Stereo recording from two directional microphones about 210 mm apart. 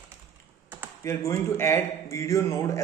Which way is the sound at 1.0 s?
15° left (ahead or behind).